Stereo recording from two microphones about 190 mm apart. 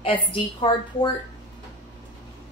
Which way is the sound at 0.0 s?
25° left (ahead or behind).